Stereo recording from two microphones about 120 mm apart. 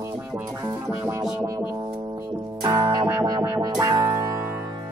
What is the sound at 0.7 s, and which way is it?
Music, 15° right (ahead or behind).